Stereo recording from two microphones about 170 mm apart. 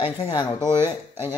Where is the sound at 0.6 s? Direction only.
15° right (ahead or behind).